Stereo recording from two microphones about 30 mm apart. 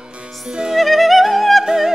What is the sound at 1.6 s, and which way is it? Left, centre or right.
Music, centre.